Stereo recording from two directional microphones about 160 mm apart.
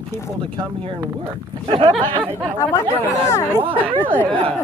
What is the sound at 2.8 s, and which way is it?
Speech, 35° right (ahead or behind).